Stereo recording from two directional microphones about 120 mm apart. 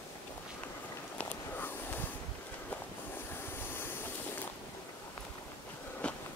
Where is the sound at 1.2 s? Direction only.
15° left (ahead or behind).